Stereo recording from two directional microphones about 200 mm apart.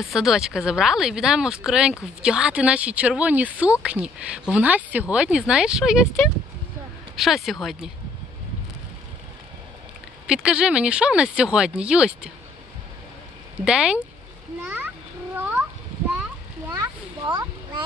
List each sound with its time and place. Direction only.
0.0 s speech: centre (ahead or behind)
7.2 s speech: centre (ahead or behind)
10.2 s speech: 5° right (ahead or behind)
13.7 s speech: 5° right (ahead or behind)
14.6 s a sound: 10° right (ahead or behind)
16.6 s a sound: 20° right (ahead or behind)